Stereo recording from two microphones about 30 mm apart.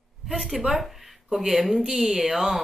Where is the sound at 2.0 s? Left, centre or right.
Right.